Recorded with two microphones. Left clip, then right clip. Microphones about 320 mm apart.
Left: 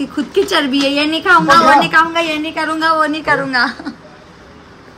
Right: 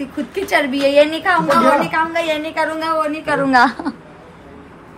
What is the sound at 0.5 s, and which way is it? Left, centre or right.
Speech, right.